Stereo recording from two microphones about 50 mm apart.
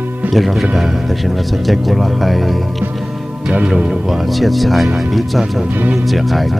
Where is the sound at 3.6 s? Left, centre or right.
Centre.